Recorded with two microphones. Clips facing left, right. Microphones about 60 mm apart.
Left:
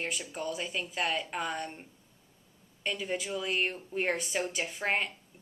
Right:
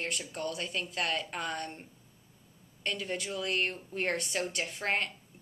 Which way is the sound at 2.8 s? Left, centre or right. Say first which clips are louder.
Left 1 dB; centre.